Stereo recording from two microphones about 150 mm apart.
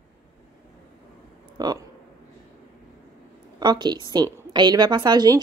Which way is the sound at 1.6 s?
25° right (ahead or behind).